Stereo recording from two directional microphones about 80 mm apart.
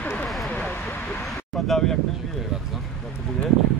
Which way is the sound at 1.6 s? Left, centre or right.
Centre.